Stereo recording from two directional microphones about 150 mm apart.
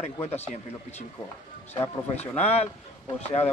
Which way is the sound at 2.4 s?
45° left (ahead or behind).